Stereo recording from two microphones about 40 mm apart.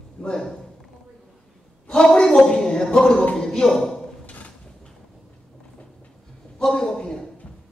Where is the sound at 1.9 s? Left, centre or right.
Centre.